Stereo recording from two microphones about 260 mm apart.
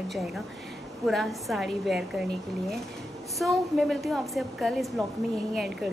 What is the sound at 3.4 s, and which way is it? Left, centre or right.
A woman's voice, centre.